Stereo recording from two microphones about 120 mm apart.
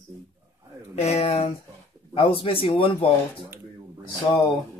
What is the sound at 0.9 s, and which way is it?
Speech, 60° left (ahead or behind).